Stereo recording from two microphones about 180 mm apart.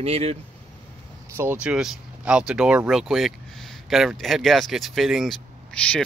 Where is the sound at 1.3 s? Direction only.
10° right (ahead or behind).